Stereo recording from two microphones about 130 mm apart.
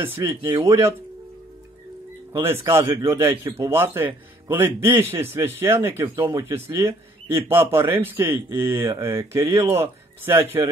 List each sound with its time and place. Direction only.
0.0 s speech: 20° right (ahead or behind)
2.3 s speech: 20° right (ahead or behind)
2.8 s speech: 30° right (ahead or behind)
3.2 s speech: 20° right (ahead or behind)